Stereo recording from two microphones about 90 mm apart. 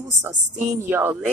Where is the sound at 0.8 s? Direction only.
20° right (ahead or behind).